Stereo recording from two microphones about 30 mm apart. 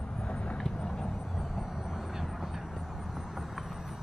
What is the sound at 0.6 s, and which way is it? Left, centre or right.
Vehicle, centre.